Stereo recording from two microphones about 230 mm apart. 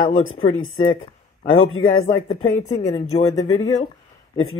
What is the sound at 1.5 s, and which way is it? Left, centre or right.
Speech, left.